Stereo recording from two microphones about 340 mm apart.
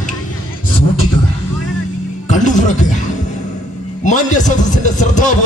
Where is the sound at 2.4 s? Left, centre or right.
Left.